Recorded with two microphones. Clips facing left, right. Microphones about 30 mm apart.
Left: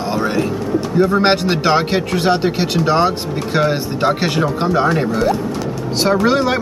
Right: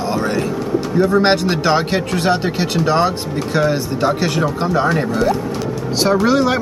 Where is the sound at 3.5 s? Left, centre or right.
Left.